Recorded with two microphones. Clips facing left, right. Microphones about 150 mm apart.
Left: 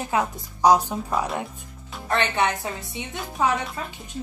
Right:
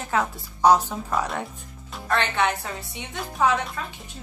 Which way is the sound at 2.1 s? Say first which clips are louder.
Even; 20° left (ahead or behind).